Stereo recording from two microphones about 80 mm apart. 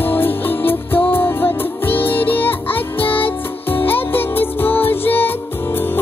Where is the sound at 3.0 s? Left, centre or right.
Left.